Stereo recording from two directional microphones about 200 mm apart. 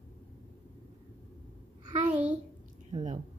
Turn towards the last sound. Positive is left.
turn(degrees=-35)  # may be behind; listen again after turning